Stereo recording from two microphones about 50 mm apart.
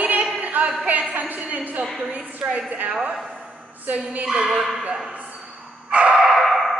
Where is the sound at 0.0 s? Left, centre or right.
Right.